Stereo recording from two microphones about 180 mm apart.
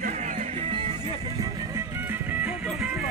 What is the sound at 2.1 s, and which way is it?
Music, 10° right (ahead or behind).